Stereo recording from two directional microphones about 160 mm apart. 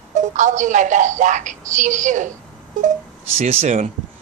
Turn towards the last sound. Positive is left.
turn(degrees=-45)  # may be behind; listen again after turning